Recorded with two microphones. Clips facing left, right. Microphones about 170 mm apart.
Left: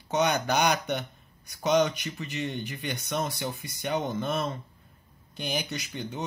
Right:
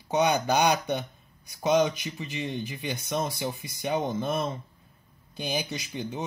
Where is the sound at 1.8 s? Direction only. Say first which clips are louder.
Right 1 dB; 15° right (ahead or behind).